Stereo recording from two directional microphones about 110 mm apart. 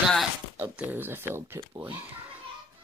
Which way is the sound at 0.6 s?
15° right (ahead or behind).